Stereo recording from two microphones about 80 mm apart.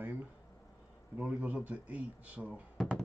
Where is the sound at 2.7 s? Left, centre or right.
Centre.